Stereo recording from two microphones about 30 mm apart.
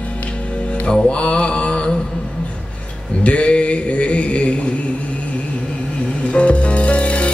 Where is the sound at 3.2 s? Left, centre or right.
Left.